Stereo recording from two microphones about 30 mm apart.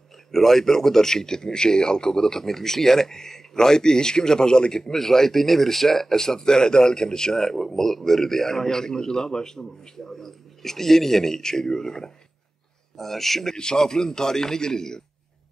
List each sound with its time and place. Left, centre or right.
0.3 s speech: centre
7.4 s a man's voice: centre
12.9 s a man's voice: centre
13.6 s speech: left